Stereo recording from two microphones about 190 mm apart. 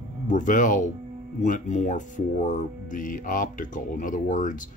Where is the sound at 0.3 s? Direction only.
40° left (ahead or behind).